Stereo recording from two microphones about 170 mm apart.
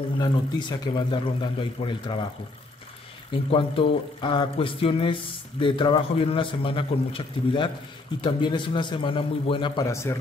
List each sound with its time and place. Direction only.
0.2 s a man's voice: 25° left (ahead or behind)
3.4 s a man's voice: 35° left (ahead or behind)